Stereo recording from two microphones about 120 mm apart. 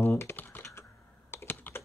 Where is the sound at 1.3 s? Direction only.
20° left (ahead or behind).